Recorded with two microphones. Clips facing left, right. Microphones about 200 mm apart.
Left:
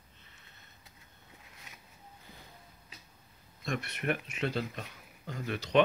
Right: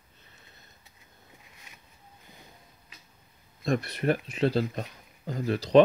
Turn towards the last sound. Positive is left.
turn(degrees=-35)  # may be behind; listen again after turning